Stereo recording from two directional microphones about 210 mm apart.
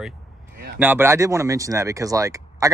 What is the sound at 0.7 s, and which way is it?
Speech, 10° right (ahead or behind).